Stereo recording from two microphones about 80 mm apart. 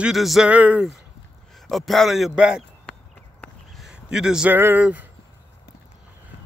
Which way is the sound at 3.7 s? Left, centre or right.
Centre.